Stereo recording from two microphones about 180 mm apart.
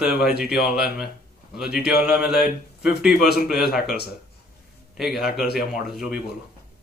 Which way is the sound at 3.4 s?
Centre (ahead or behind).